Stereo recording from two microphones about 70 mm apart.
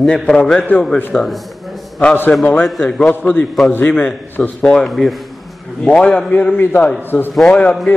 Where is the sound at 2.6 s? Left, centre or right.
Centre.